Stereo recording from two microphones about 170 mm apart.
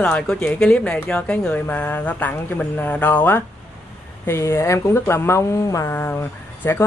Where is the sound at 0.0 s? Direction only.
5° left (ahead or behind).